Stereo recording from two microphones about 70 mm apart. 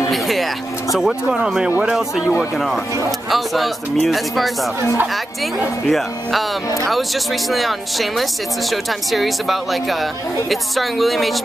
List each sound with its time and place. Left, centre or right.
0.1 s speech: centre
5.9 s speech: centre